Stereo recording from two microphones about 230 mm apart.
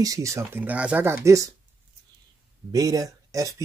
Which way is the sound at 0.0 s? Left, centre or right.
Centre.